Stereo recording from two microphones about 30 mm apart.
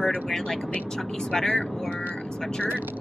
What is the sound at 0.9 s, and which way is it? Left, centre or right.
Speech, centre.